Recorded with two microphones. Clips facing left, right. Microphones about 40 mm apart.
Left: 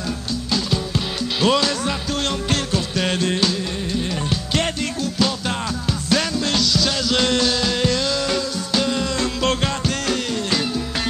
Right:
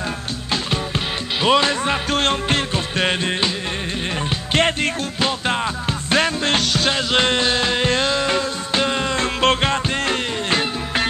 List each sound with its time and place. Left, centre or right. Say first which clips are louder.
0.5 s music: right 1 dB; right
6.0 s music: right 3 dB; right